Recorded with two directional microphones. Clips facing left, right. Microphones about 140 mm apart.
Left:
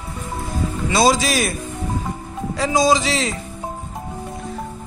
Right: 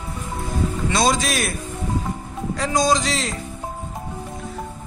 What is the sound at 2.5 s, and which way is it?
Speech, centre (ahead or behind).